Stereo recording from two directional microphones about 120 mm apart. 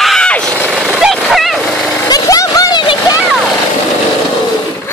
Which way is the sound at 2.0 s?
30° left (ahead or behind).